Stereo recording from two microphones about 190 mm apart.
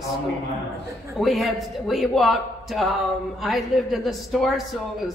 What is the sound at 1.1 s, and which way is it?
A man's voice, centre (ahead or behind).